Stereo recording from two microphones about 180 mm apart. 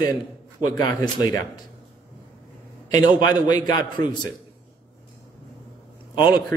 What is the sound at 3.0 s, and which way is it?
A man's voice, 25° left (ahead or behind).